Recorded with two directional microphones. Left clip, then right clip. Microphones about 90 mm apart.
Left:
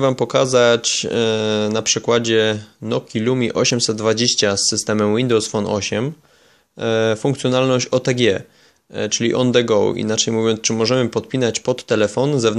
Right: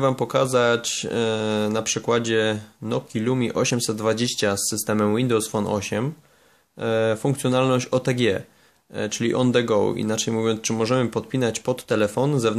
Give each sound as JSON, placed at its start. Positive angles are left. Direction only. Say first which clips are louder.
{"t": 0.0, "sound": "speech", "louder": "left 4 dB", "side_deg": 20}